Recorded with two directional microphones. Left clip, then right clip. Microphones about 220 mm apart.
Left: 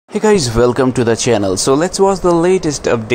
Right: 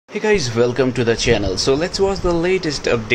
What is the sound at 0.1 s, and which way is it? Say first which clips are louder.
Speech: left 5 dB; 25° left (ahead or behind).